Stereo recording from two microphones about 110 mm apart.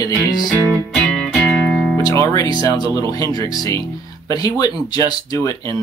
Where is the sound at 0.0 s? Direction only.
35° left (ahead or behind).